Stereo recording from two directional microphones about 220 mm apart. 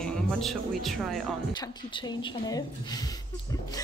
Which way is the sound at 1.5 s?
20° left (ahead or behind).